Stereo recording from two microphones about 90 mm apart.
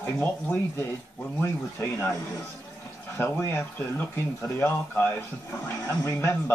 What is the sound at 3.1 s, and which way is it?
Speech, 25° left (ahead or behind).